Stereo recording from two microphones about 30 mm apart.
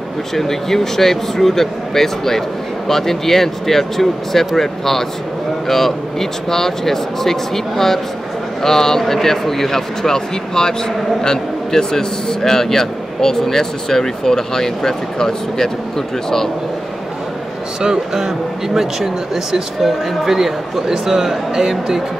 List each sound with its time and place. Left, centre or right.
0.3 s a man's voice: centre
17.8 s speech: centre